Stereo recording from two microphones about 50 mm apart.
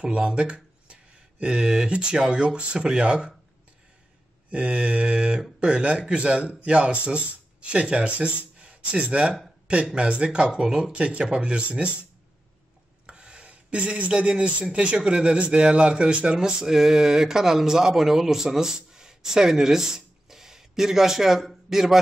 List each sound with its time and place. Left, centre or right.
0.0 s speech: right
4.5 s speech: right
13.0 s speech: right; by 21.9 s centre